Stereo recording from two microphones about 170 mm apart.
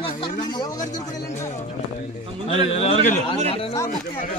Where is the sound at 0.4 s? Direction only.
25° left (ahead or behind).